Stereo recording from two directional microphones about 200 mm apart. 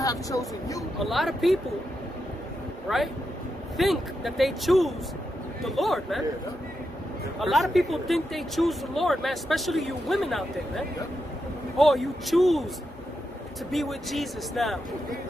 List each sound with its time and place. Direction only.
0.0 s speech: 15° left (ahead or behind)
0.9 s speech: centre (ahead or behind)
2.9 s speech: centre (ahead or behind)
7.3 s speech: centre (ahead or behind)
13.7 s speech: centre (ahead or behind)